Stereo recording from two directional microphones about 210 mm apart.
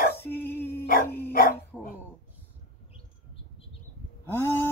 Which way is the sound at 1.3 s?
45° left (ahead or behind).